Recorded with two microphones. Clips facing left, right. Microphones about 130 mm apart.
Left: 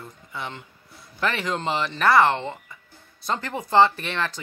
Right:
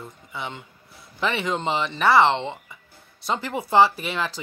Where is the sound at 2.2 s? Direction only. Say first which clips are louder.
Right 1 dB; 20° right (ahead or behind).